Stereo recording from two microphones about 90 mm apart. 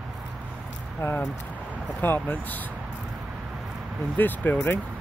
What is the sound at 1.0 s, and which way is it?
Speech, 25° left (ahead or behind).